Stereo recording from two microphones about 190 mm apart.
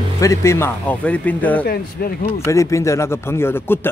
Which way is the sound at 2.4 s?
15° left (ahead or behind).